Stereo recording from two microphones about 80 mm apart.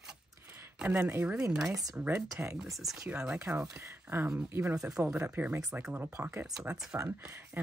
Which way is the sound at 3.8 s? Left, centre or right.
Right.